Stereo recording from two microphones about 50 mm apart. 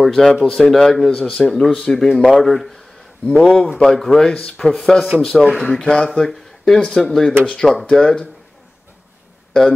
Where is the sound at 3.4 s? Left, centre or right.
Centre.